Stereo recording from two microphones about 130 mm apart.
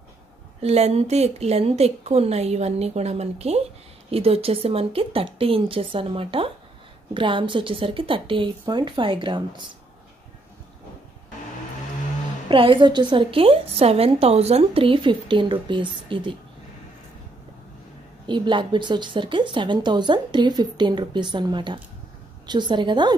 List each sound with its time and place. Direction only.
0.6 s a woman's voice: 55° right (ahead or behind); by 9.7 s 40° right (ahead or behind)
12.4 s a woman's voice: 40° right (ahead or behind)
18.2 s a woman's voice: 35° right (ahead or behind)